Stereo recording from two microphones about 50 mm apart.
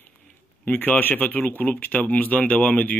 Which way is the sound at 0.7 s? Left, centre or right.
Left.